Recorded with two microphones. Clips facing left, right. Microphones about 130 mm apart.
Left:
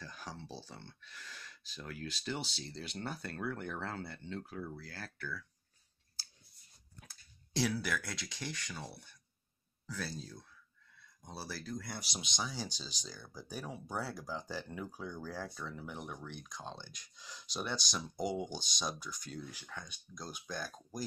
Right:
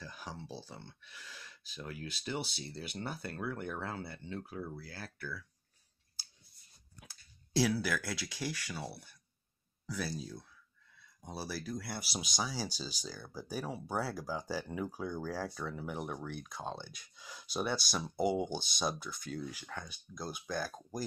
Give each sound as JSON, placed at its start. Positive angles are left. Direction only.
{"t": 0.0, "sound": "speech", "side_deg": -10}
{"t": 7.0, "sound": "speech", "side_deg": -5}
{"t": 15.8, "sound": "speech", "side_deg": -50}
{"t": 18.1, "sound": "speech", "side_deg": -5}
{"t": 18.5, "sound": "speech", "side_deg": -55}
{"t": 19.3, "sound": "speech", "side_deg": -10}